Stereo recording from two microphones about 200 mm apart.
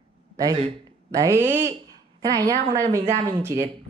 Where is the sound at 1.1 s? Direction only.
15° right (ahead or behind).